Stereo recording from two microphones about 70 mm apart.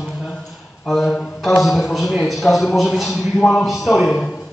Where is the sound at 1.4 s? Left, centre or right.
Centre.